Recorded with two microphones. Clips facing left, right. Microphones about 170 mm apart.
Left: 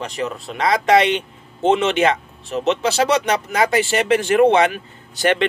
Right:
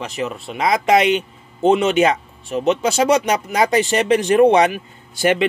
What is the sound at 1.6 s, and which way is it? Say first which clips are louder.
Speech: right 2 dB; 35° right (ahead or behind).